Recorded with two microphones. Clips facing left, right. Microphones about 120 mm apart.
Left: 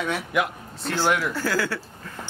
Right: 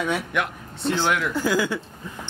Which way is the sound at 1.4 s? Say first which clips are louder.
Right 3 dB; 15° right (ahead or behind).